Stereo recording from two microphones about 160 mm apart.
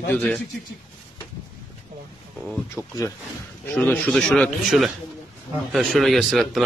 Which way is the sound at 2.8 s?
20° left (ahead or behind).